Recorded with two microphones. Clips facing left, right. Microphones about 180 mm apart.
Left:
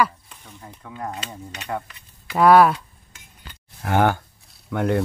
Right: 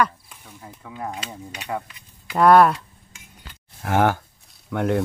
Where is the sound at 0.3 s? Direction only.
5° right (ahead or behind).